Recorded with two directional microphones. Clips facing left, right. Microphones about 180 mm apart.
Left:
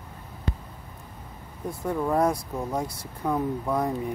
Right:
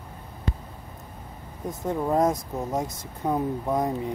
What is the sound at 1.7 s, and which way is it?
Speech, 20° right (ahead or behind).